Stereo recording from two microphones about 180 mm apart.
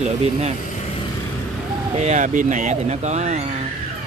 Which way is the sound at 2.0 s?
45° right (ahead or behind).